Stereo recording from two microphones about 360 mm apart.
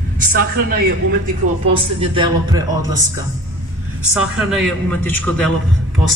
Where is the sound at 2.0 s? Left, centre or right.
Centre.